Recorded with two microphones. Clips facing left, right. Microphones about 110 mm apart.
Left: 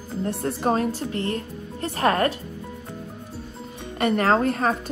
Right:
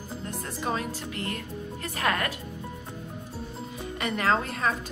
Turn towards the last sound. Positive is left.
turn(degrees=45)  # may be behind; listen again after turning